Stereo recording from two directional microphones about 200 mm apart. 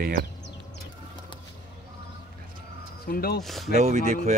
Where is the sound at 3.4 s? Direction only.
Centre (ahead or behind).